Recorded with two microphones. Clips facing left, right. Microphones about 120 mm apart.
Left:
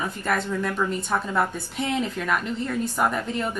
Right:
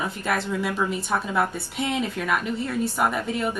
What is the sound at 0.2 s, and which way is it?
A woman's voice, 5° right (ahead or behind).